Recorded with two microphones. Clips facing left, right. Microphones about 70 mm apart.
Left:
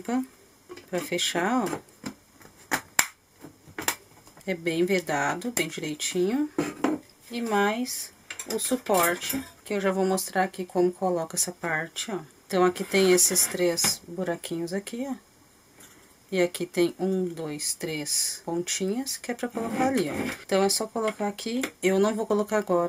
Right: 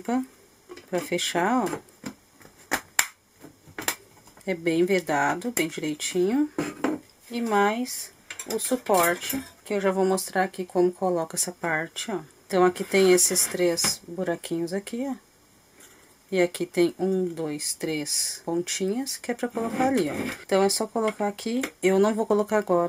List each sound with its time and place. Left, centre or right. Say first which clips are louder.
0.7 s speech: right 2 dB; centre
2.7 s finger snapping: even; centre
4.5 s speech: right 2 dB; centre
13.1 s speech: right 2 dB; centre
16.4 s speech: right 2 dB; centre